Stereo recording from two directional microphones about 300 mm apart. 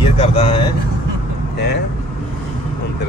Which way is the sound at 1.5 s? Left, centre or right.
Left.